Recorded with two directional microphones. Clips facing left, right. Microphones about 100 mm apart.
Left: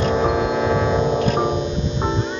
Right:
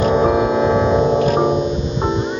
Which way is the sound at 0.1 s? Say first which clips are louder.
Right 4 dB; 10° right (ahead or behind).